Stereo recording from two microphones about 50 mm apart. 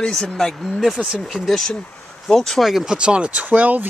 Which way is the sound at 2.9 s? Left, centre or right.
Centre.